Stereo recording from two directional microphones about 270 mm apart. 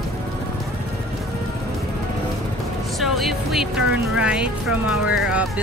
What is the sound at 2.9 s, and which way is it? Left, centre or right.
Speech, centre.